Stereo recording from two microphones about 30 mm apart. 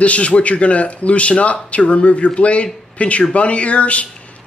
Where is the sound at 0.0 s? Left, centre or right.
Left.